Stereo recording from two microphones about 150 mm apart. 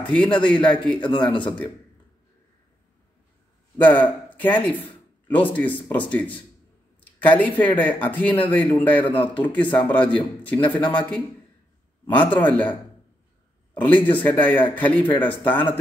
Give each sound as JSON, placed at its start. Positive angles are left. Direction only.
{"t": 0.1, "sound": "speech", "side_deg": 10}
{"t": 3.7, "sound": "speech", "side_deg": 10}
{"t": 12.4, "sound": "speech", "side_deg": 10}
{"t": 13.7, "sound": "speech", "side_deg": 10}